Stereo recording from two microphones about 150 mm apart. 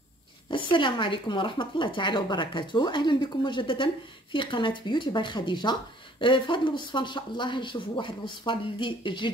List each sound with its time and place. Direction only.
0.5 s speech: 35° left (ahead or behind)